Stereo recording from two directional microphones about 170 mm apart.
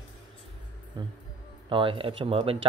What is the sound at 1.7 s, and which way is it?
Speech, 30° right (ahead or behind).